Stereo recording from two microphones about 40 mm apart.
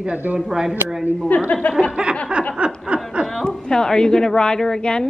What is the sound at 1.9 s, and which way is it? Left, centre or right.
Speech, right.